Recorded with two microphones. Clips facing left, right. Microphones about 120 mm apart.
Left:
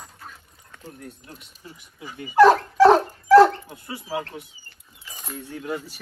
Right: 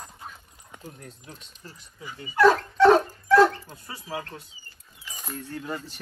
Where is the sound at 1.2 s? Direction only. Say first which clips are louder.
Left 1 dB; 5° left (ahead or behind).